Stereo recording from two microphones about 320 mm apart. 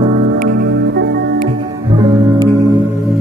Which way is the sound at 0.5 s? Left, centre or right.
Right.